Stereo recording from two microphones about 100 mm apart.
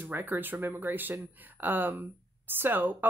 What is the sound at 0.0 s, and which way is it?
Speech, 20° right (ahead or behind).